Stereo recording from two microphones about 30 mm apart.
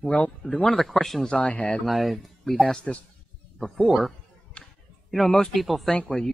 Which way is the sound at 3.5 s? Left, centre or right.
Centre.